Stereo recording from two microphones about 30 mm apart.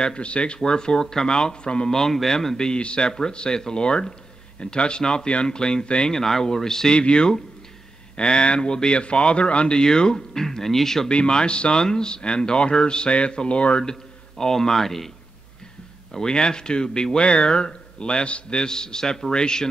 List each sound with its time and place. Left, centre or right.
0.0 s speech: left
1.9 s speech: centre
2.5 s speech: left
6.1 s speech: centre
6.9 s speech: left
9.8 s speech: left
11.1 s speech: left
14.4 s speech: centre
16.1 s speech: left